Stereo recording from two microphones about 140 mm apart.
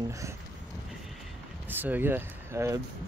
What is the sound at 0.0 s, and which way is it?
Speech, 20° right (ahead or behind).